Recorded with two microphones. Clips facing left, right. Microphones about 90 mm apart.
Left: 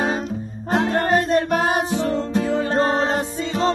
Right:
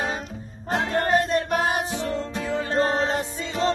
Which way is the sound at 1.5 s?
90° left.